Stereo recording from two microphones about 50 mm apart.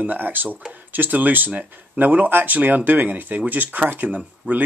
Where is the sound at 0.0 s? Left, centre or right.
Right.